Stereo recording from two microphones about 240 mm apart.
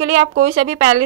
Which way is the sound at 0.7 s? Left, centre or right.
Right.